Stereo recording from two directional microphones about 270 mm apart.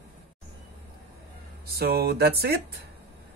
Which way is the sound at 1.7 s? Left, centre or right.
Right.